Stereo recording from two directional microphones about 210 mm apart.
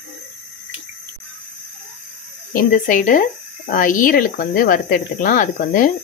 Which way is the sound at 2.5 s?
40° left (ahead or behind).